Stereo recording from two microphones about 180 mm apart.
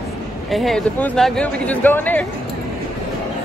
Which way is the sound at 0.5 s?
Centre (ahead or behind).